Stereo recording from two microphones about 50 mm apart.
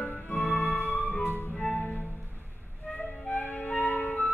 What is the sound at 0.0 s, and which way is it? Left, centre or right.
Music, left.